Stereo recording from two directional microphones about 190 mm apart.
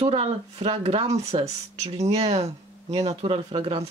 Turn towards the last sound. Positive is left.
turn(degrees=-30)  # may be behind; listen again after turning